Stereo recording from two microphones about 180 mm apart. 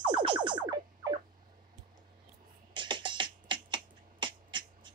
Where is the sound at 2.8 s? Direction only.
25° right (ahead or behind).